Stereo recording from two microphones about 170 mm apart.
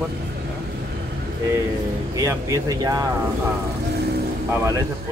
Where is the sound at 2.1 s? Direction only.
20° right (ahead or behind).